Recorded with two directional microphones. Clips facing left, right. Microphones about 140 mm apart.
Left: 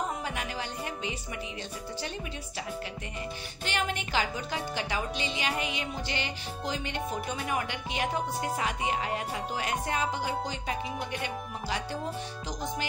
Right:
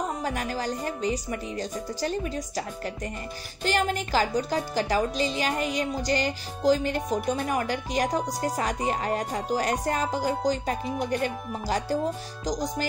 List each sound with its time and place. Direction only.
0.2 s speech: 40° right (ahead or behind)